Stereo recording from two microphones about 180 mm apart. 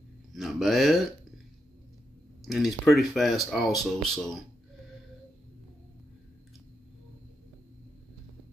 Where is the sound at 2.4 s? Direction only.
Centre (ahead or behind).